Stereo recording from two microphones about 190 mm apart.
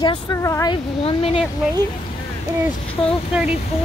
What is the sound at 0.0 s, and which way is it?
Speech, 20° left (ahead or behind).